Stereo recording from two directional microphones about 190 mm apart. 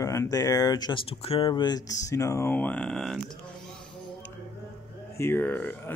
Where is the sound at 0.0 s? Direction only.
15° left (ahead or behind).